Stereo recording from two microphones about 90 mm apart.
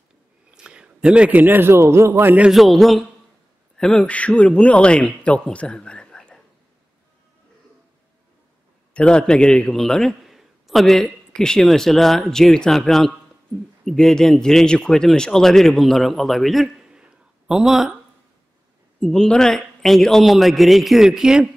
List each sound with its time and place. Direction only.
0.6 s a man's voice: 10° right (ahead or behind); by 2.4 s 25° right (ahead or behind)
2.4 s a man's voice: centre (ahead or behind)
8.9 s a man's voice: 10° left (ahead or behind); by 17.9 s 5° right (ahead or behind)
18.9 s a man's voice: 10° left (ahead or behind); by 21.5 s 5° right (ahead or behind)